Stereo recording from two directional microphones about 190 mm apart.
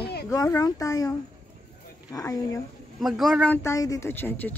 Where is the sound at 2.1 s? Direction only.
20° left (ahead or behind).